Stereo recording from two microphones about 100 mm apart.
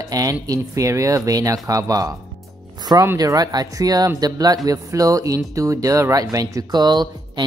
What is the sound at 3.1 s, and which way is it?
Speech, 40° right (ahead or behind).